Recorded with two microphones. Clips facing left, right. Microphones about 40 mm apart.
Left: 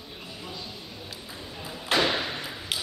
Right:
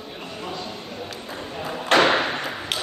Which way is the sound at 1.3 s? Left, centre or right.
Right.